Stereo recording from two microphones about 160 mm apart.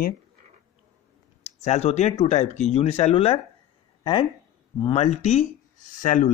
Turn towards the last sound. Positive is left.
turn(degrees=55)  # may be behind; listen again after turning